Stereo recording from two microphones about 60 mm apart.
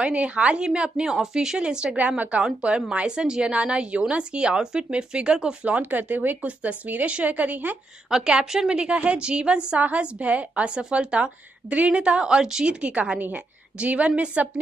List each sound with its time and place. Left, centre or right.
0.0 s a woman's voice: centre
5.8 s speech: right
8.1 s a woman's voice: centre